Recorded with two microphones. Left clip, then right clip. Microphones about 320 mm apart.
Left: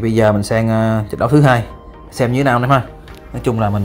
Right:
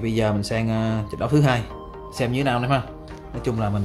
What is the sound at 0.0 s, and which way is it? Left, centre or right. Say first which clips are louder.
Speech: left 10 dB; centre.